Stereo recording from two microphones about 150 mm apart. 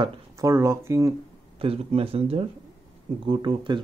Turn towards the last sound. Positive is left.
turn(degrees=-30)  # may be behind; listen again after turning